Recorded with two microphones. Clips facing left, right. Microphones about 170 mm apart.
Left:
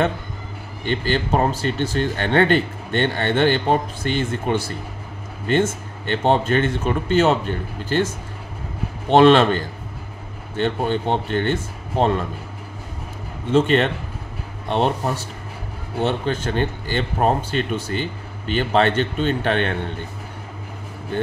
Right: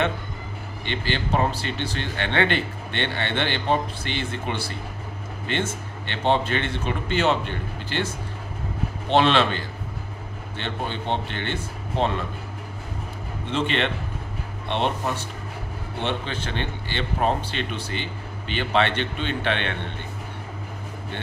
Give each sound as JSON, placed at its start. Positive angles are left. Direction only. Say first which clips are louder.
{"t": 0.8, "sound": "speech", "louder": "left 6 dB", "side_deg": 45}
{"t": 9.1, "sound": "speech", "louder": "left 7 dB", "side_deg": 45}
{"t": 13.5, "sound": "speech", "louder": "left 8 dB", "side_deg": 45}